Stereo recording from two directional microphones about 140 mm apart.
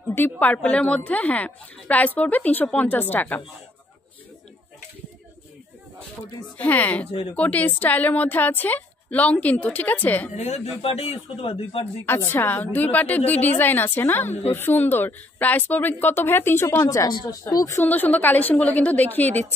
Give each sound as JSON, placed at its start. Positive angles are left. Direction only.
{"t": 0.1, "sound": "a woman's voice", "side_deg": 15}
{"t": 6.6, "sound": "a woman's voice", "side_deg": 10}
{"t": 10.3, "sound": "speech", "side_deg": 55}
{"t": 12.1, "sound": "a woman's voice", "side_deg": 15}